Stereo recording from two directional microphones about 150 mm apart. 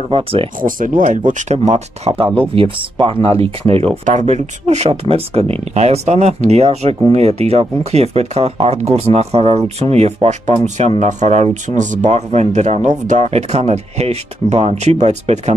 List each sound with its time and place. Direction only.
0.1 s speech: 40° right (ahead or behind)
0.6 s speech: 65° right (ahead or behind); by 15.5 s 45° right (ahead or behind)